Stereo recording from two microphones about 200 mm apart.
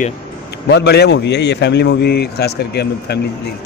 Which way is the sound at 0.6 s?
60° left (ahead or behind).